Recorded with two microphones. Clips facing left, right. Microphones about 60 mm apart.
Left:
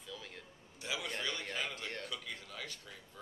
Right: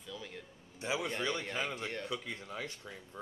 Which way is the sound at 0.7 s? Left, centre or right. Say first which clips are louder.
Right 5 dB; right.